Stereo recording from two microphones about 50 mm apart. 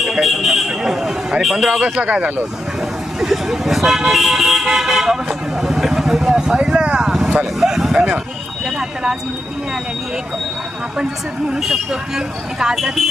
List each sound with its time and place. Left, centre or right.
0.0 s a sound: centre
1.8 s speech: right
3.2 s speech: centre
11.5 s speech: centre